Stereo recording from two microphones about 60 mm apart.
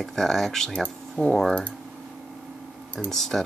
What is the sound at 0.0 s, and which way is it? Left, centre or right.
Speech, centre.